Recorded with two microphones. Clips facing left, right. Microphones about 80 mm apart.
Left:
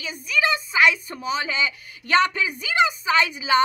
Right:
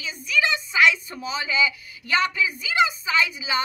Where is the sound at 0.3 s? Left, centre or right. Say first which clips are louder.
Left 1 dB; left.